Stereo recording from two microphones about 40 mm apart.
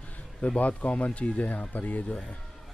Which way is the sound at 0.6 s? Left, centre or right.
Left.